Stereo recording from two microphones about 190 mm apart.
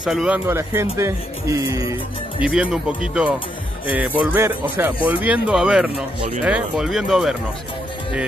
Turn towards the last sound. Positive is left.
turn(degrees=0)  # may be behind; listen again after turning